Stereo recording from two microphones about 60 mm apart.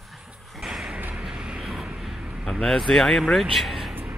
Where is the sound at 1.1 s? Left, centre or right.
Centre.